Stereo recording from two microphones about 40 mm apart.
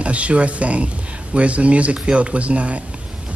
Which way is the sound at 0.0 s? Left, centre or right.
Right.